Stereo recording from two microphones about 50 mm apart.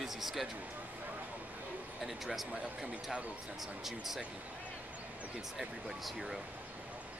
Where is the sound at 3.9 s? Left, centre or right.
Centre.